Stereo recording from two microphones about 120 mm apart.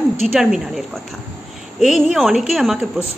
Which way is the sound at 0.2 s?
Centre (ahead or behind).